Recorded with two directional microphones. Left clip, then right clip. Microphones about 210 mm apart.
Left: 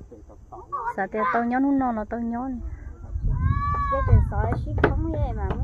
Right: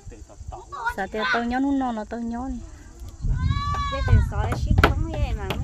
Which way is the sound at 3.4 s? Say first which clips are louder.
Left 1 dB; 65° right (ahead or behind).